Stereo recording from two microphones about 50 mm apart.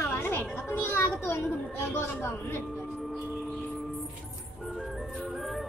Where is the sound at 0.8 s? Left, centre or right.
Left.